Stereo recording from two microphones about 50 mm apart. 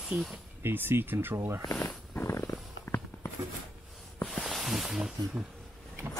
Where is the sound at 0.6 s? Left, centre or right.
Right.